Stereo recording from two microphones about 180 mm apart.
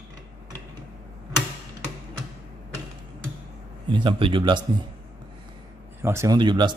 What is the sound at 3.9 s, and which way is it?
Speech, 25° right (ahead or behind).